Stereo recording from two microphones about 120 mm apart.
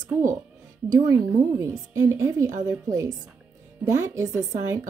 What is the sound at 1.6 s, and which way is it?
A woman's voice, 25° right (ahead or behind).